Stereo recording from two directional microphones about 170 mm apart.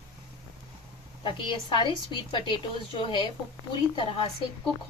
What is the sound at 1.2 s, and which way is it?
A woman's voice, 30° left (ahead or behind).